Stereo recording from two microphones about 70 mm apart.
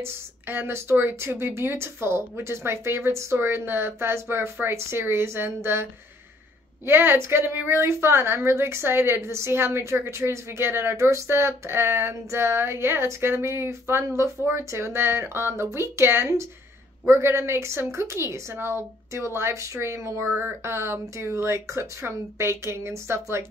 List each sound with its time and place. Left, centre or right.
0.0 s a woman's voice: right
6.9 s a woman's voice: right